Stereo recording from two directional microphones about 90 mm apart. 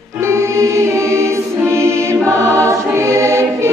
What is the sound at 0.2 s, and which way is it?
Choir, 30° right (ahead or behind).